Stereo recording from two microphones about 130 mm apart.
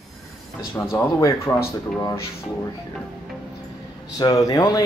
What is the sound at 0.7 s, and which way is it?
Speech, 20° left (ahead or behind).